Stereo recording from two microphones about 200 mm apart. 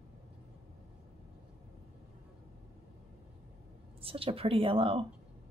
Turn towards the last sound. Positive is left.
turn(degrees=-30)  # may be behind; listen again after turning